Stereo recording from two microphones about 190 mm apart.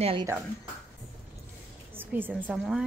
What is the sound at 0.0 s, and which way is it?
Speech, 30° right (ahead or behind).